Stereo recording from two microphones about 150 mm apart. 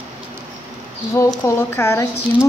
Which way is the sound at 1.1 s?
20° left (ahead or behind).